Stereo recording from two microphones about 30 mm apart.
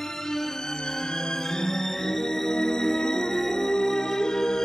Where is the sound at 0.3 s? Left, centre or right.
Centre.